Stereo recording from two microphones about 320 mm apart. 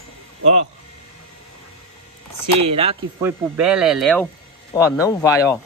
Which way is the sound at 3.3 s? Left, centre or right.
Centre.